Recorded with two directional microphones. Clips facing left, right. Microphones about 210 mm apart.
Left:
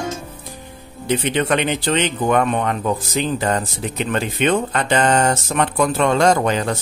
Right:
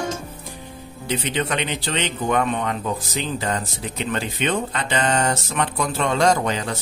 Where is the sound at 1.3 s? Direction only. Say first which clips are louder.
Left 6 dB; 60° left (ahead or behind).